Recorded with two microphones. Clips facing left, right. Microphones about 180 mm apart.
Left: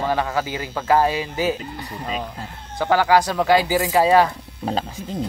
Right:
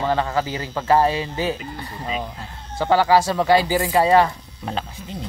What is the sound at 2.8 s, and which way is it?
Speech, centre (ahead or behind).